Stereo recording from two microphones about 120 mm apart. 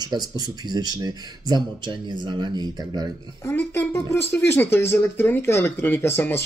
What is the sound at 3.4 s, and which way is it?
Speech, 15° left (ahead or behind).